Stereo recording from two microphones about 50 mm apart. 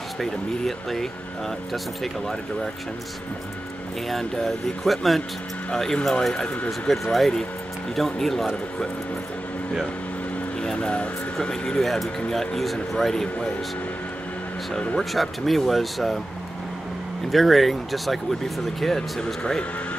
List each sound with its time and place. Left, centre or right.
0.2 s speech: centre
4.1 s speech: centre
10.6 s speech: centre
15.0 s speech: centre
17.3 s speech: centre